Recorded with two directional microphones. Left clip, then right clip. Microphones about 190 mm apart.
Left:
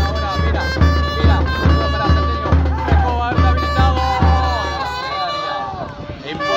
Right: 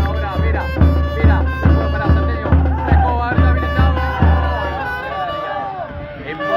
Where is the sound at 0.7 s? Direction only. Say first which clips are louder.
Left 1 dB; 55° right (ahead or behind).